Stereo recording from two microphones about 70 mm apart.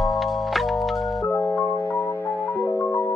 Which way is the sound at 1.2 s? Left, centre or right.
Left.